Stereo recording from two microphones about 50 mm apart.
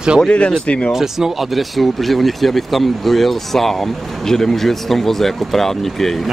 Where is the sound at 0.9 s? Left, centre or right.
Centre.